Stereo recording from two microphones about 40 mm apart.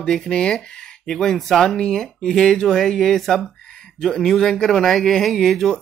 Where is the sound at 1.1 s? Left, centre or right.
Centre.